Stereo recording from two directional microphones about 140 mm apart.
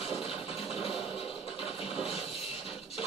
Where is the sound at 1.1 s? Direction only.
40° left (ahead or behind).